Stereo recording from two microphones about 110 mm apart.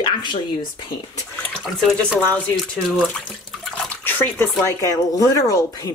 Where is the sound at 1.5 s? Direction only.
Centre (ahead or behind).